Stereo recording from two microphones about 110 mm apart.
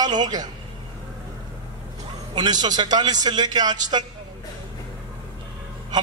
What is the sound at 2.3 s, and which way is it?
A man's voice, 40° right (ahead or behind).